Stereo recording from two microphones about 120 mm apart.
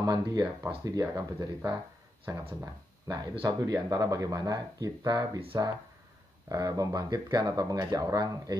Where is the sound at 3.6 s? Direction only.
30° right (ahead or behind).